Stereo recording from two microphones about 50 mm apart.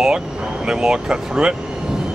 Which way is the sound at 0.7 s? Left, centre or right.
Centre.